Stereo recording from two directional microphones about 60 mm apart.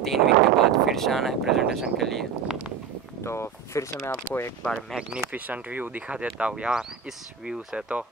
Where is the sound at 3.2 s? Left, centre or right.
Left.